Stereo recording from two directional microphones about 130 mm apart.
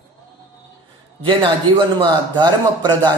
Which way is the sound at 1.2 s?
40° right (ahead or behind).